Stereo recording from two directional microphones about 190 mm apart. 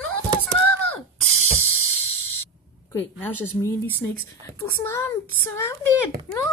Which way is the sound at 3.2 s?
15° left (ahead or behind).